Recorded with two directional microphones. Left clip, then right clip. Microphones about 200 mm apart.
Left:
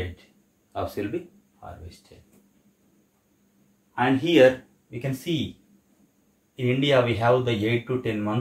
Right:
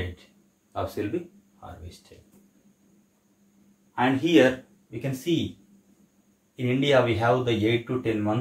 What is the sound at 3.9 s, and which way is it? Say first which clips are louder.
Speech: left 2 dB; 20° left (ahead or behind).